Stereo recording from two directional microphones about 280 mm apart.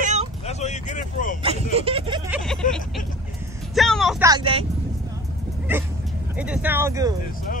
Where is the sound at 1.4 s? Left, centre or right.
Right.